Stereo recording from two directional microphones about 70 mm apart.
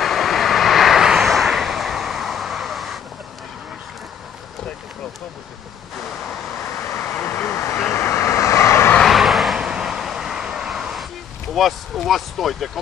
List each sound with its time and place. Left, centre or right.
0.0 s vehicle: centre
6.9 s vehicle: left
7.5 s vehicle: left
9.0 s vehicle: centre